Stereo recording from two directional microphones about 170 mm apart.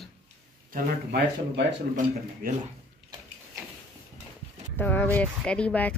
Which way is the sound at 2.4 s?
55° right (ahead or behind).